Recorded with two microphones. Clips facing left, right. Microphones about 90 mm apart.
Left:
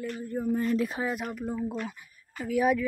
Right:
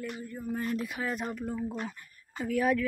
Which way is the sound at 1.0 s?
25° left (ahead or behind).